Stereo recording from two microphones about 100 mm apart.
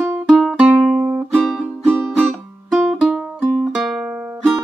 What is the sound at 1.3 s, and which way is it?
Music, 5° left (ahead or behind).